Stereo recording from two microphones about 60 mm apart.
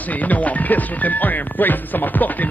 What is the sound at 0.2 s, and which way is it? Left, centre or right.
Speech, left.